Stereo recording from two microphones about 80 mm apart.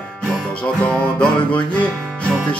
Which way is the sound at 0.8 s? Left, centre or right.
Centre.